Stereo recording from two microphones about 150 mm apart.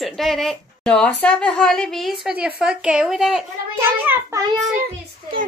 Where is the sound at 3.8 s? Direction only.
20° right (ahead or behind).